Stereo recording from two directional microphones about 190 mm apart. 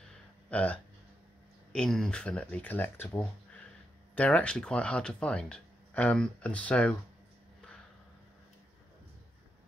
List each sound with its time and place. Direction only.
0.5 s speech: 5° left (ahead or behind)